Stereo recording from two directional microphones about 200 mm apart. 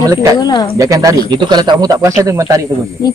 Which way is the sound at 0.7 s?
15° right (ahead or behind).